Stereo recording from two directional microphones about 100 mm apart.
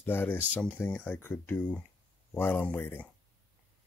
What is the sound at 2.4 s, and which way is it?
Mantra, 20° left (ahead or behind).